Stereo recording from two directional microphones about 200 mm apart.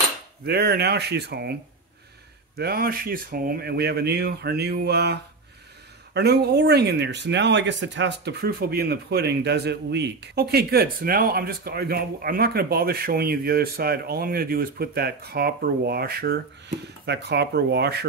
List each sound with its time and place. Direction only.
0.5 s speech: 55° right (ahead or behind)